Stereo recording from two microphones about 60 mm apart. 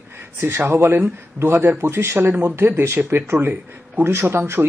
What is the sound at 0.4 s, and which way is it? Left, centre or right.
A man's voice, right.